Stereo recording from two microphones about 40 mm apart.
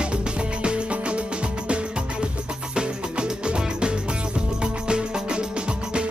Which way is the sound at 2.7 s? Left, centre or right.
Centre.